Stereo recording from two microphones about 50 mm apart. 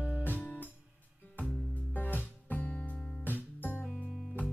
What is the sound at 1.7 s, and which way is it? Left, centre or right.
Music, left.